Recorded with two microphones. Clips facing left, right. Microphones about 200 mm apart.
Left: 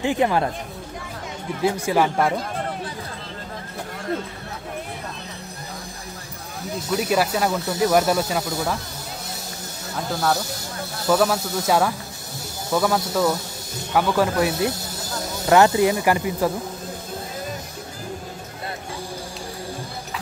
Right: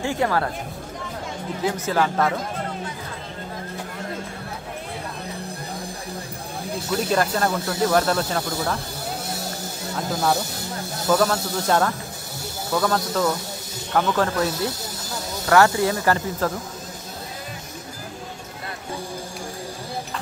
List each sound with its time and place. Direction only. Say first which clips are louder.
0.0 s speech: left 2 dB; 20° left (ahead or behind)
1.9 s speech: left 1 dB; 10° left (ahead or behind)
7.0 s speech: left 1 dB; 5° left (ahead or behind)
11.1 s speech: left 1 dB; 5° left (ahead or behind)